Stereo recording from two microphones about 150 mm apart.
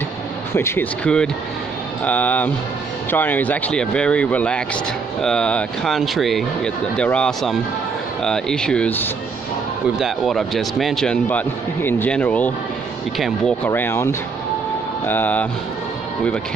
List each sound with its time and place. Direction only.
0.6 s speech: 15° left (ahead or behind)
9.9 s speech: centre (ahead or behind)
13.7 s speech: 15° left (ahead or behind)